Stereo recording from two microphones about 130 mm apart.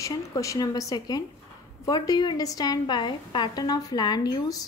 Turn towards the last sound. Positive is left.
turn(degrees=30)  # may be behind; listen again after turning